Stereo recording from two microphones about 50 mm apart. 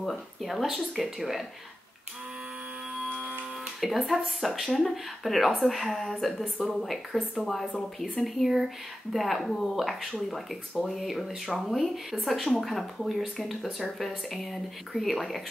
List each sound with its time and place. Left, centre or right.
0.0 s speech: centre
3.3 s music: right
4.1 s speech: centre